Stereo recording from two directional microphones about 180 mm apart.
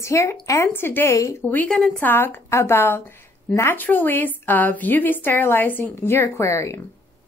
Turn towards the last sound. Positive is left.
turn(degrees=15)  # may be behind; listen again after turning